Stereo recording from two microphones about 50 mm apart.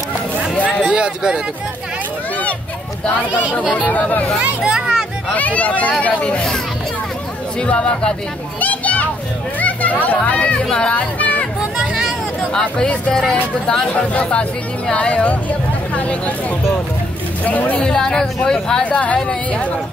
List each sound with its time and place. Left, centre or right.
0.8 s a sound: centre
4.6 s a child's voice: centre
5.3 s speech: left
7.6 s speech: left
8.5 s children playing: left
9.6 s a sound: left
10.0 s speech: left
10.9 s music: left
12.5 s speech: centre
17.5 s speech: left
17.7 s speech: centre
18.9 s speech: left